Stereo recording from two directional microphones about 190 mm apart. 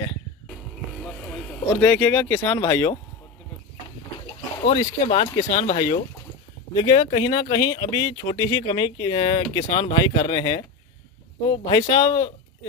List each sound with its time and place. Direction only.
1.8 s speech: 10° left (ahead or behind)
4.6 s speech: 35° left (ahead or behind)